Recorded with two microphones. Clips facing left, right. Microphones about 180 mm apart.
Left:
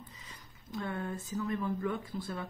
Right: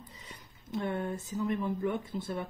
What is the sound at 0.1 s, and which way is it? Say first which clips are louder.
Speech: right 3 dB; 30° right (ahead or behind).